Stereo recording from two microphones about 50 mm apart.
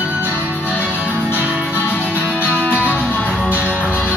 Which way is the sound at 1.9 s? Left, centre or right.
Left.